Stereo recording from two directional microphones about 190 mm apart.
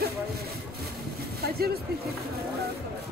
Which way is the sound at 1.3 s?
55° right (ahead or behind).